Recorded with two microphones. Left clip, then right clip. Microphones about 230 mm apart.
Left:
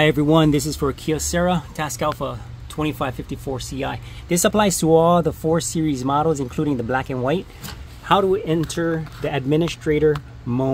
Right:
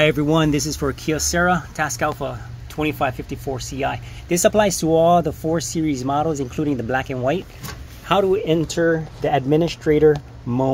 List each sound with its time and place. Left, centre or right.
0.0 s speech: centre